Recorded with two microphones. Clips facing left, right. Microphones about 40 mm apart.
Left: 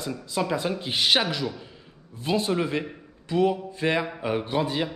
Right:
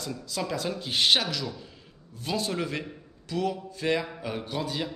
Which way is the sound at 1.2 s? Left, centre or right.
Left.